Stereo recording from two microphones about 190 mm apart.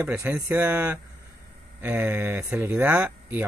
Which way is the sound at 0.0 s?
10° right (ahead or behind).